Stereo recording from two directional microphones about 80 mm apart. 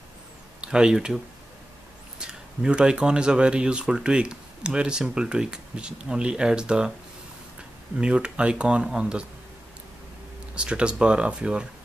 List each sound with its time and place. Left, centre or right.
0.6 s speech: centre
8.0 s speech: centre
10.5 s speech: centre